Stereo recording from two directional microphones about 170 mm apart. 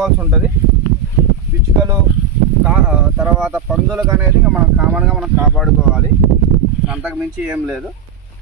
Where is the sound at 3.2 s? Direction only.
5° right (ahead or behind).